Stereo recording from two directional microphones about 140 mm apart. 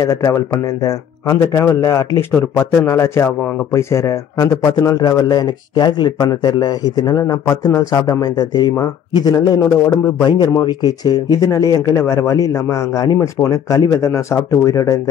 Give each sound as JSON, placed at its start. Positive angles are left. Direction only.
{"t": 0.0, "sound": "speech", "side_deg": 25}
{"t": 3.3, "sound": "speech", "side_deg": 10}
{"t": 3.7, "sound": "speech", "side_deg": 20}